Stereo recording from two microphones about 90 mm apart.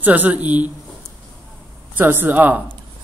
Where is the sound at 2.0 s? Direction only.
20° right (ahead or behind).